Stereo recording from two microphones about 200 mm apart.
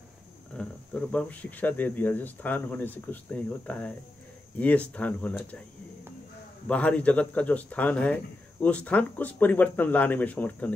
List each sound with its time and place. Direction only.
0.6 s a man's voice: 5° left (ahead or behind)
6.7 s a man's voice: 5° left (ahead or behind)